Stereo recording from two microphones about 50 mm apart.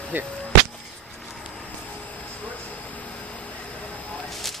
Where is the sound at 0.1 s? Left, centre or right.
Right.